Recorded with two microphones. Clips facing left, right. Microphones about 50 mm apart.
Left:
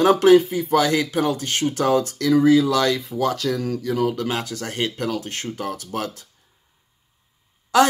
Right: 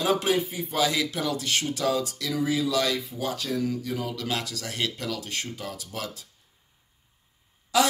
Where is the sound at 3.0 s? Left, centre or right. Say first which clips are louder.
Left 8 dB; left.